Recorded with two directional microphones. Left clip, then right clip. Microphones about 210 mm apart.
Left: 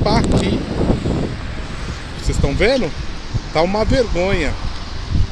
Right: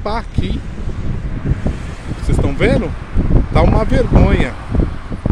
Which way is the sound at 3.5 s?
10° right (ahead or behind).